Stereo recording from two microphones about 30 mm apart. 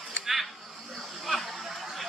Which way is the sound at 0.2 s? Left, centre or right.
Centre.